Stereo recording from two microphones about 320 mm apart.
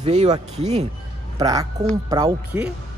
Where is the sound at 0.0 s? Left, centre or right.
Centre.